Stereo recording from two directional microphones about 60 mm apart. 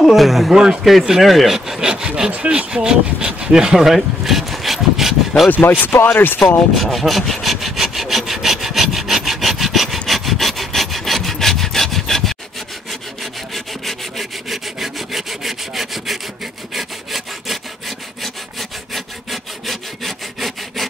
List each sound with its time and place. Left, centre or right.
0.0 s speech: centre
0.9 s rub: centre
2.3 s speech: centre
5.5 s speech: left
6.7 s sawing: centre
13.8 s rub: centre
16.7 s sawing: centre